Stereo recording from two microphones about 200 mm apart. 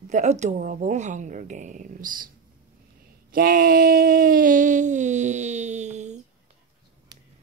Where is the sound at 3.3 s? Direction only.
45° right (ahead or behind).